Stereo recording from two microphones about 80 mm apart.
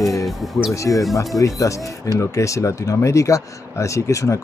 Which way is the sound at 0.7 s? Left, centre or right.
Left.